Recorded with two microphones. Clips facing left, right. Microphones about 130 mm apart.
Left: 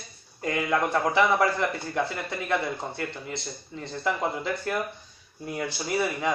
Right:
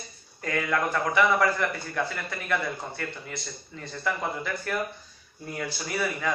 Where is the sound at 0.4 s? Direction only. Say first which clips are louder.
Left 2 dB; 20° left (ahead or behind).